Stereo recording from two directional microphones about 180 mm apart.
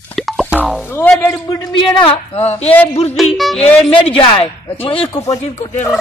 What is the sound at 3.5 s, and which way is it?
Speech, 30° left (ahead or behind).